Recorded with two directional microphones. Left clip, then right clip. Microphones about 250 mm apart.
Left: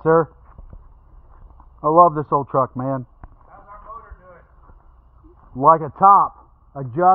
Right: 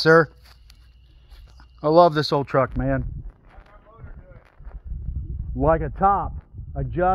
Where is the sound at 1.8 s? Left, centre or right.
Centre.